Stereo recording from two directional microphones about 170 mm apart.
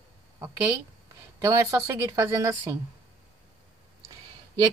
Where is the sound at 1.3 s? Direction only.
15° right (ahead or behind).